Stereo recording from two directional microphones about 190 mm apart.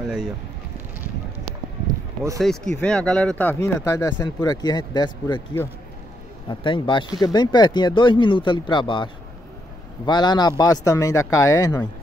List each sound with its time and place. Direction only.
2.4 s speech: 5° left (ahead or behind); by 5.6 s 20° left (ahead or behind)
6.6 s speech: 25° left (ahead or behind)